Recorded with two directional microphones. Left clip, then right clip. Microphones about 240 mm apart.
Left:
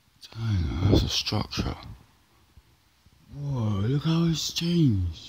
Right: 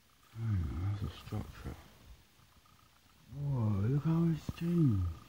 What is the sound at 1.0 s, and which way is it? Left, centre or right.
Speech, left.